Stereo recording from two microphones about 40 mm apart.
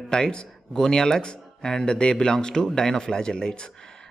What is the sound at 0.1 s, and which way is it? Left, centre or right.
Speech, centre.